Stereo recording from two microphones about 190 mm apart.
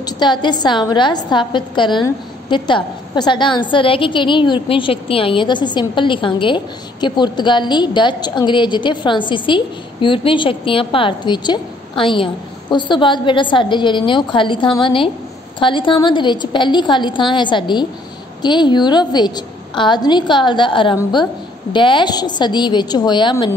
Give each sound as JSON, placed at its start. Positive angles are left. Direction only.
{"t": 0.0, "sound": "a woman's voice", "side_deg": 25}